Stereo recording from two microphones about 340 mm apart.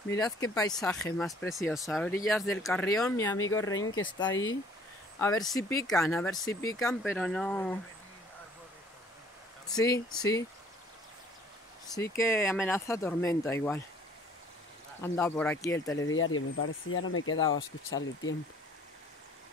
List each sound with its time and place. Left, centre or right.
0.2 s speech: centre
5.2 s speech: centre
9.7 s speech: centre
11.9 s speech: centre
15.0 s speech: centre
16.1 s speech: left